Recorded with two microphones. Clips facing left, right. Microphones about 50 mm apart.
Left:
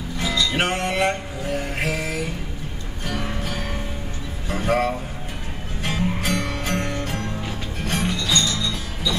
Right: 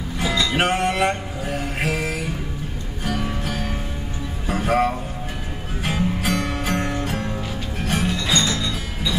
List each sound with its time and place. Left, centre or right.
0.5 s music: centre
8.2 s music: right